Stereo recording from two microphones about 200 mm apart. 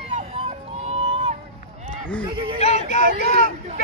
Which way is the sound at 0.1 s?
30° right (ahead or behind).